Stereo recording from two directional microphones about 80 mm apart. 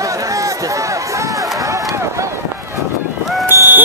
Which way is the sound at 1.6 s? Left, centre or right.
Right.